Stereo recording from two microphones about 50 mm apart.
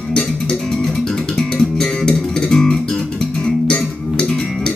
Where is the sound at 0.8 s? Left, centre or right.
Centre.